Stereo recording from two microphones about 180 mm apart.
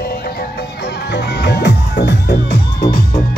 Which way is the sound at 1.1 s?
65° left (ahead or behind).